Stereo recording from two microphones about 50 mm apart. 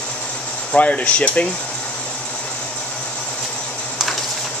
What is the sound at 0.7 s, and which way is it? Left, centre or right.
Speech, left.